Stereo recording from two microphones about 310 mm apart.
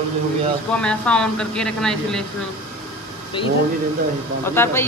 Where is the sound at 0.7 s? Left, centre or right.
Centre.